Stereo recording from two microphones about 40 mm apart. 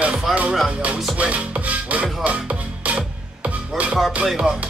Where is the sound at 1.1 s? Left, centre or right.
Right.